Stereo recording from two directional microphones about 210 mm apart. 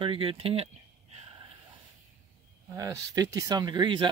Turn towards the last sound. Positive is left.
turn(degrees=-20)  # may be behind; listen again after turning